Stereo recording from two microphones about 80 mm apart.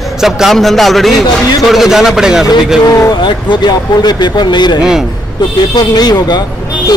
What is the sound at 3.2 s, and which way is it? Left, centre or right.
Speech, left.